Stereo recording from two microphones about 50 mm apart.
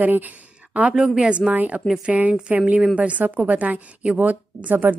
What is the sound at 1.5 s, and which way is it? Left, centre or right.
A woman's voice, right.